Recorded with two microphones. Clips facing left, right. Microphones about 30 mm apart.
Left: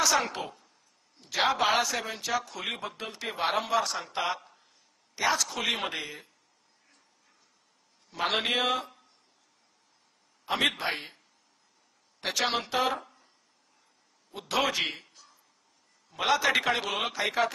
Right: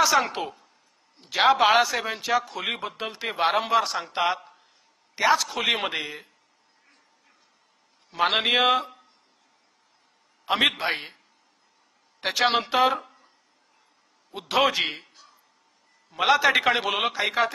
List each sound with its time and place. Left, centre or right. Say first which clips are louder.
0.0 s a man's voice: right 5 dB; centre
8.1 s a man's voice: right 6 dB; right
10.4 s a man's voice: right 5 dB; right
12.2 s a man's voice: right 6 dB; right
14.3 s a man's voice: right 6 dB; right